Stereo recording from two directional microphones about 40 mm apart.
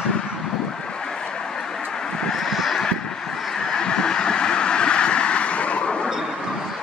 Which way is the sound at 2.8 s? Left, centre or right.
Centre.